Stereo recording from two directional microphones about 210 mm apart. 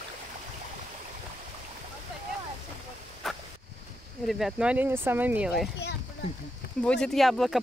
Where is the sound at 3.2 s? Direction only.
Centre (ahead or behind).